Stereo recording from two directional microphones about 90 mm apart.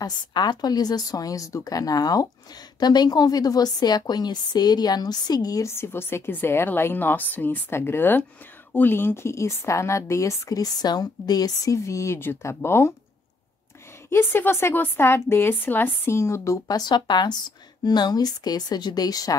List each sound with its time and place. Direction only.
0.0 s a woman's voice: 50° left (ahead or behind)
5.7 s a woman's voice: 25° left (ahead or behind)
14.1 s a woman's voice: 25° left (ahead or behind); by 19.3 s 45° left (ahead or behind)